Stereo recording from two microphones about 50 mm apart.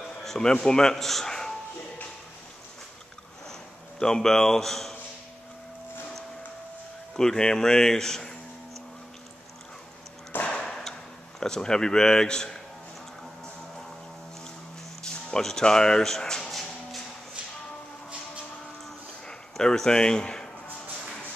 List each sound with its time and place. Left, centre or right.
0.2 s a man's voice: centre
4.0 s speech: centre
7.2 s speech: centre
10.6 s a sound: centre
15.0 s speech: centre
19.2 s speech: centre